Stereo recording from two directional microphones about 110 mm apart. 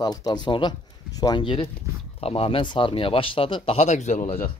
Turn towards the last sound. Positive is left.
turn(degrees=90)